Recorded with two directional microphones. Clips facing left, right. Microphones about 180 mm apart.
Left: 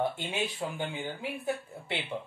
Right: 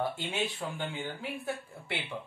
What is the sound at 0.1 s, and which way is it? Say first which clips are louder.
Speech: even; 15° left (ahead or behind).